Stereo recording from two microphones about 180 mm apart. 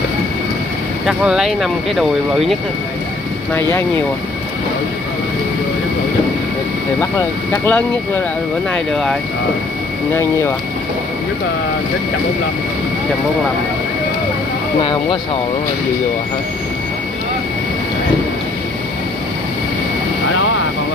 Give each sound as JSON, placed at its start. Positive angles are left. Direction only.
{"t": 1.0, "sound": "speech", "side_deg": -5}
{"t": 3.5, "sound": "speech", "side_deg": 15}
{"t": 7.0, "sound": "speech", "side_deg": 15}
{"t": 14.8, "sound": "speech", "side_deg": 30}